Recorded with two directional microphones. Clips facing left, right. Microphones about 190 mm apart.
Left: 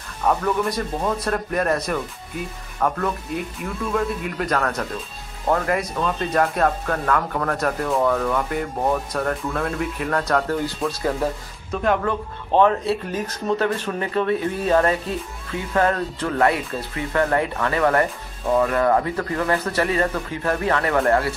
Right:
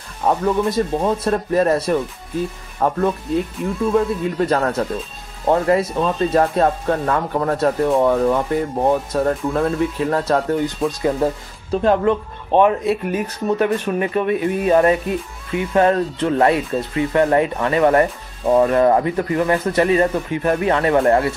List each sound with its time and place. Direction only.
0.2 s speech: 25° right (ahead or behind)
11.7 s speech: 30° right (ahead or behind)
12.0 s speech: 20° right (ahead or behind)